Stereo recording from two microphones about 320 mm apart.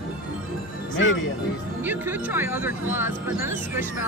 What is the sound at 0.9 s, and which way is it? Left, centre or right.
Music, left.